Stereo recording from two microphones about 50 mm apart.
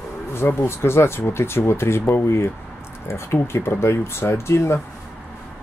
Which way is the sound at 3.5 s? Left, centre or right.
Left.